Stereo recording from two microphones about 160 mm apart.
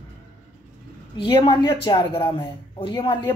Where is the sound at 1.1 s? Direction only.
30° left (ahead or behind).